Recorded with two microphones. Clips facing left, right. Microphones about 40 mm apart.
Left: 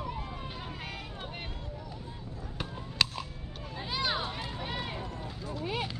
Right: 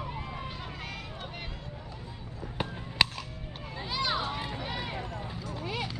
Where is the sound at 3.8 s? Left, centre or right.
Centre.